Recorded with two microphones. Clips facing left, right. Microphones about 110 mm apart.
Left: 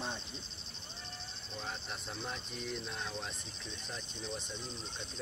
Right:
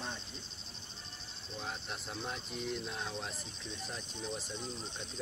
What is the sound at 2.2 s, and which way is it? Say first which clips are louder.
Speech: right 3 dB; 5° right (ahead or behind).